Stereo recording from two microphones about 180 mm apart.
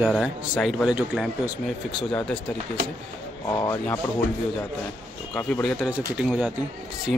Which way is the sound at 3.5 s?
15° left (ahead or behind).